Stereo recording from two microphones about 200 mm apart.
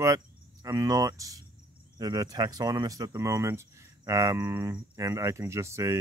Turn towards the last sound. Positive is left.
turn(degrees=-15)  # may be behind; listen again after turning